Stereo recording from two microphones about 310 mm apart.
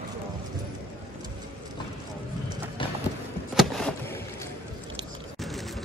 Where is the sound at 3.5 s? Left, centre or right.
Centre.